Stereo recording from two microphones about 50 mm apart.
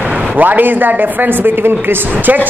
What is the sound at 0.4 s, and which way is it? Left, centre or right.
Speech, right.